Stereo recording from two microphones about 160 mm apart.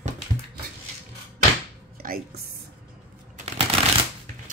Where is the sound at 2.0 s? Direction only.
60° right (ahead or behind).